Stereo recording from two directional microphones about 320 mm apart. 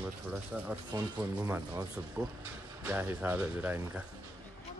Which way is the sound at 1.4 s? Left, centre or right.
Centre.